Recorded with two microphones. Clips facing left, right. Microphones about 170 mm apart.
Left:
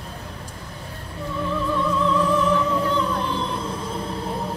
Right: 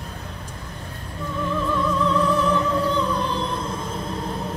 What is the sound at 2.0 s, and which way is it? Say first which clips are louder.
Music: left 1 dB; 35° right (ahead or behind).